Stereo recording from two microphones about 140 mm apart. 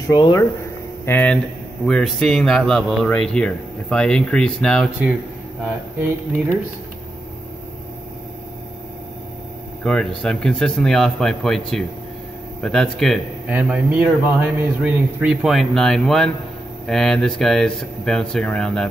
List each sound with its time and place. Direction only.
0.1 s speech: 25° left (ahead or behind)
1.0 s speech: 10° left (ahead or behind)
9.8 s speech: 5° left (ahead or behind)
13.5 s a man's voice: 10° right (ahead or behind)